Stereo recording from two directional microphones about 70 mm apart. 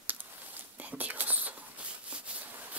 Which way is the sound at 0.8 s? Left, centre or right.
Right.